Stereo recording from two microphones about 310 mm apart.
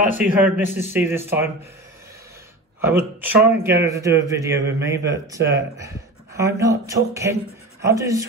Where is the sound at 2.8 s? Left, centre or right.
Centre.